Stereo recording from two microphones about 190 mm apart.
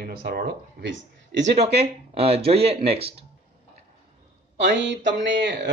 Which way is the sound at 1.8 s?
35° right (ahead or behind).